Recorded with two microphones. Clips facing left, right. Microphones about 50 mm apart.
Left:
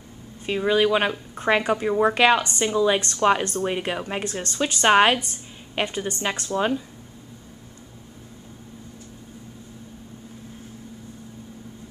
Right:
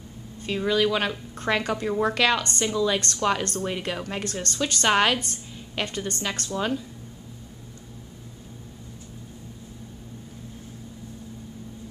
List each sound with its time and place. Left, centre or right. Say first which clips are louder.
0.5 s speech: left 3 dB; left